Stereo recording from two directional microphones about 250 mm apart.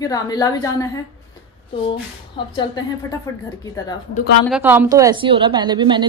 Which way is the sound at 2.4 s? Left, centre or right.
Centre.